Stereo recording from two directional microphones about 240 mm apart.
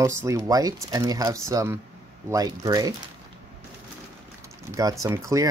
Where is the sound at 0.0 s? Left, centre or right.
Centre.